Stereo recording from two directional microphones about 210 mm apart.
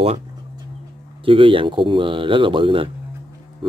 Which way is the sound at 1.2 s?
25° right (ahead or behind).